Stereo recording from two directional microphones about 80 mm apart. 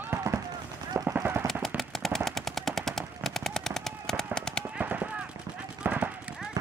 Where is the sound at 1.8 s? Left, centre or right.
Centre.